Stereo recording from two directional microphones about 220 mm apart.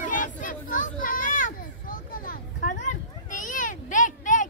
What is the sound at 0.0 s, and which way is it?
Children playing, 35° left (ahead or behind).